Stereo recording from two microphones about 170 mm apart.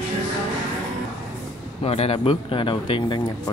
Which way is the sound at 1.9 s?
35° left (ahead or behind).